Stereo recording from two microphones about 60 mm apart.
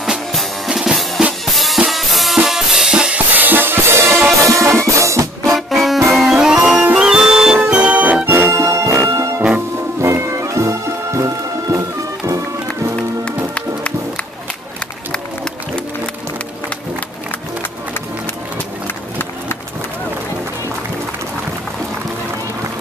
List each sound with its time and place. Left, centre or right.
0.7 s drum kit: centre
1.9 s music: centre
3.3 s music: right
4.4 s music: right
5.7 s music: centre
6.3 s music: centre
7.7 s music: right
8.3 s music: right
10.0 s music: right